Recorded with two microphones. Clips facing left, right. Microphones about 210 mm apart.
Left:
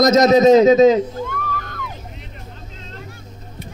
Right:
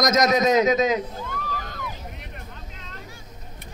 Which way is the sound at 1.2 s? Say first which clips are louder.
Left 6 dB; 55° left (ahead or behind).